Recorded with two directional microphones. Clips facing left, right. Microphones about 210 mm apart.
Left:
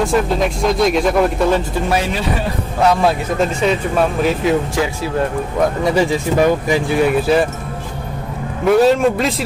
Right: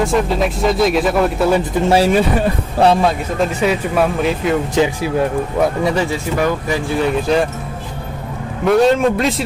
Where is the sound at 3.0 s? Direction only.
5° right (ahead or behind).